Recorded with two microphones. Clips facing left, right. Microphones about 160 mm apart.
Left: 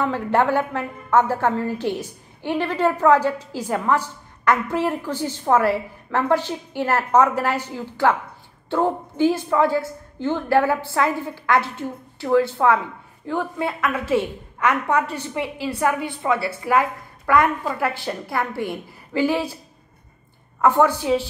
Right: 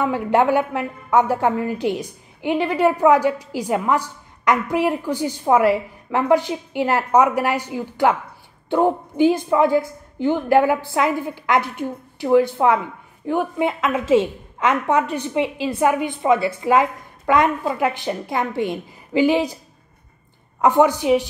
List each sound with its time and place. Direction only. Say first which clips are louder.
0.0 s a woman's voice: right 2 dB; 15° right (ahead or behind)
20.6 s a woman's voice: right 2 dB; 15° right (ahead or behind)